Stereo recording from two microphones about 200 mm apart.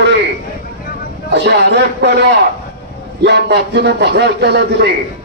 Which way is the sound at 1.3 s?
55° right (ahead or behind).